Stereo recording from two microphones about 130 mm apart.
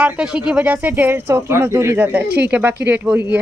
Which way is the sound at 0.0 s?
10° right (ahead or behind).